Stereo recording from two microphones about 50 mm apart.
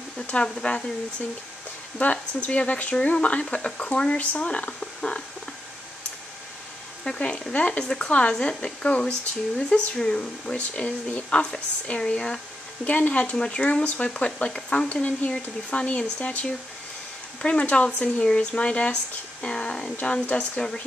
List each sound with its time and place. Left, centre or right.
0.3 s speech: left
2.0 s speech: left
7.1 s speech: left
12.8 s speech: left
17.4 s speech: centre